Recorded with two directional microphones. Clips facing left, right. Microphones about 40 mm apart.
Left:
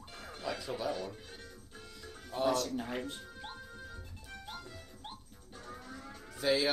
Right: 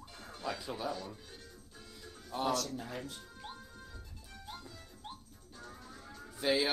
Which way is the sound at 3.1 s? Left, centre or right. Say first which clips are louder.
Left 3 dB; left.